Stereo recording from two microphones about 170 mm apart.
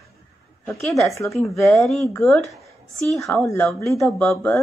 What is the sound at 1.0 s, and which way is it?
Speech, 15° left (ahead or behind).